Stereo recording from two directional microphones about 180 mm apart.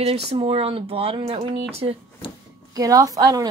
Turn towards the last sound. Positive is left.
turn(degrees=-20)  # may be behind; listen again after turning